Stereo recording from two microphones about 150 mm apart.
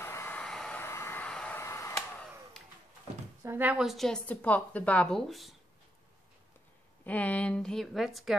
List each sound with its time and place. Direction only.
0.0 s vehicle: 15° left (ahead or behind)
0.4 s vehicle: 5° left (ahead or behind)
0.8 s vehicle: 15° left (ahead or behind)
1.6 s a sound: 20° left (ahead or behind)
2.0 s a sound: 5° left (ahead or behind)
3.4 s a woman's voice: 10° right (ahead or behind)
7.1 s a woman's voice: 10° left (ahead or behind)